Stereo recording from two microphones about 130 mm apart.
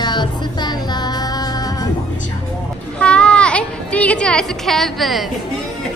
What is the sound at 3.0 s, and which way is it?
Children playing, 10° left (ahead or behind).